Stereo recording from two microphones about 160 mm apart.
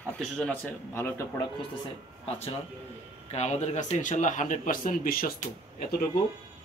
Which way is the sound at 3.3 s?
45° left (ahead or behind).